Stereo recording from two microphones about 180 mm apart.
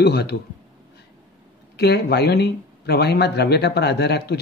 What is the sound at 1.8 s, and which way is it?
A man's voice, 65° left (ahead or behind).